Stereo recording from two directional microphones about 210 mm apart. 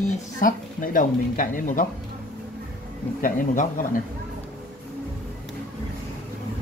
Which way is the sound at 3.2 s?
40° left (ahead or behind).